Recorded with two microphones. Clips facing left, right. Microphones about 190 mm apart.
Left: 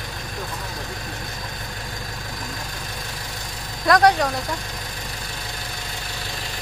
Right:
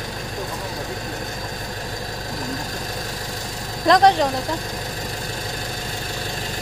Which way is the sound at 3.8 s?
25° right (ahead or behind).